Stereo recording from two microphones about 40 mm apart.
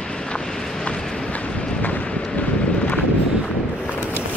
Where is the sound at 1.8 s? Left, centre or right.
Left.